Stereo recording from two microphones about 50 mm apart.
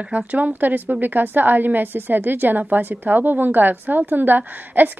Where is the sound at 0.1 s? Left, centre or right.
Right.